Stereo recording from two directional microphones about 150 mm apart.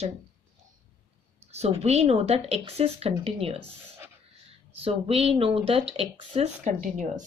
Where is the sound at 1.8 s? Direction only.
45° right (ahead or behind).